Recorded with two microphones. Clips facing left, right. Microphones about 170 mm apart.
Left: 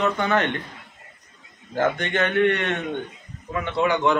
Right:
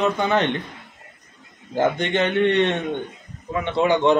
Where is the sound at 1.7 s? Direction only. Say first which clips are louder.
Right 2 dB; 20° right (ahead or behind).